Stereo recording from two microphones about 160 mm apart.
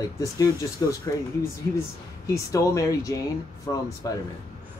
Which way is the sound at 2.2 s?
20° left (ahead or behind).